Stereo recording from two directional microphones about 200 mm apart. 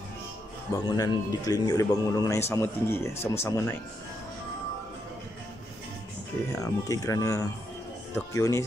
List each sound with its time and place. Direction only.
0.8 s speech: 15° left (ahead or behind)
6.5 s speech: 15° left (ahead or behind)